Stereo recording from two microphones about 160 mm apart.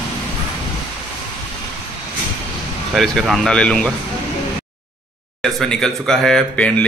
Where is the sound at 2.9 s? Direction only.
Centre (ahead or behind).